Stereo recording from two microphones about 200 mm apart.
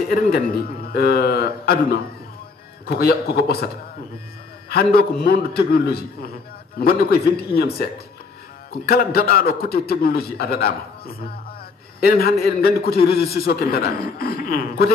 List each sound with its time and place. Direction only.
0.1 s a man's voice: 50° left (ahead or behind)